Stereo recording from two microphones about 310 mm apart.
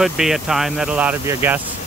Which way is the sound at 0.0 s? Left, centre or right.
Centre.